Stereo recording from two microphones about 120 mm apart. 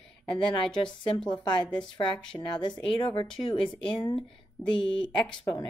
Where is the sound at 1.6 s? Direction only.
10° left (ahead or behind).